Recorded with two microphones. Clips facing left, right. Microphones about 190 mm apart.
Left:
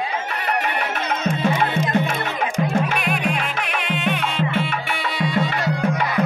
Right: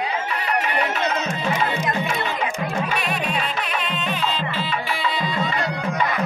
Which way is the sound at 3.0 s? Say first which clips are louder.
Left 2 dB; 55° left (ahead or behind).